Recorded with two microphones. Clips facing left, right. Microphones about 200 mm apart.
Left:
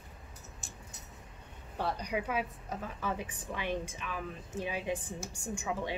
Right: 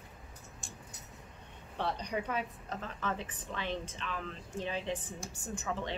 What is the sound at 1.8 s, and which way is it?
A woman's voice, 5° left (ahead or behind).